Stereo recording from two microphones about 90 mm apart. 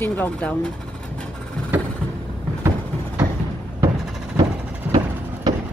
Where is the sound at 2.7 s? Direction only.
30° right (ahead or behind).